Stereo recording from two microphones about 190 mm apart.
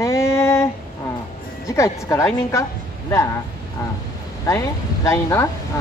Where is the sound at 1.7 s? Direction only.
15° left (ahead or behind).